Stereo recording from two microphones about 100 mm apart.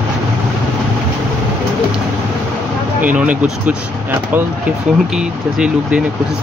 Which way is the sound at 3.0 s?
15° right (ahead or behind).